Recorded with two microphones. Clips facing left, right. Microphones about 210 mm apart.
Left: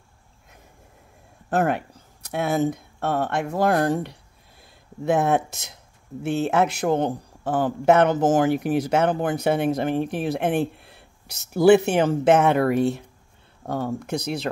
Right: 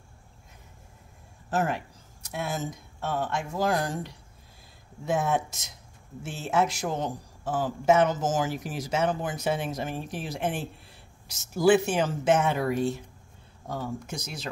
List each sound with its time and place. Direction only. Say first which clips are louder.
1.5 s a man's voice: left 6 dB; 60° left (ahead or behind)